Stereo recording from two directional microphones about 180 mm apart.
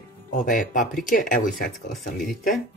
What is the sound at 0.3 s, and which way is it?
Speech, 45° left (ahead or behind).